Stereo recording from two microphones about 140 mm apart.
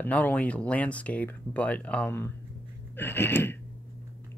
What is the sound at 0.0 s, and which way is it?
Speech, 10° left (ahead or behind).